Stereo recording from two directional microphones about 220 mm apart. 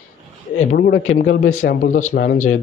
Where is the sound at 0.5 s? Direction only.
35° left (ahead or behind).